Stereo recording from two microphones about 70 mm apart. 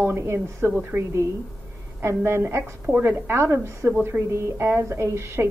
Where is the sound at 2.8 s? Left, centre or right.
Right.